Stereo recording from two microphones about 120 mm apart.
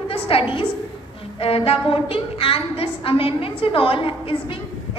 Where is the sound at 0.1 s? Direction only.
50° left (ahead or behind).